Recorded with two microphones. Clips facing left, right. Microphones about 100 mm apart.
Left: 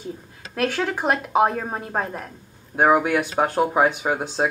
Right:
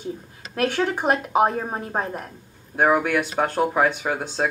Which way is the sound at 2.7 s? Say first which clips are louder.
Left 2 dB; 15° left (ahead or behind).